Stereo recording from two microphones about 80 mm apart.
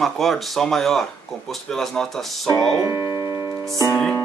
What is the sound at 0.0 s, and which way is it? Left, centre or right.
Speech, centre.